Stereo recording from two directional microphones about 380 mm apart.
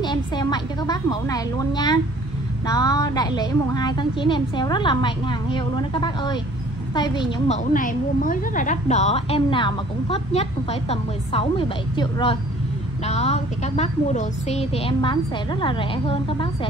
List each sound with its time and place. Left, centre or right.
0.0 s a woman's voice: centre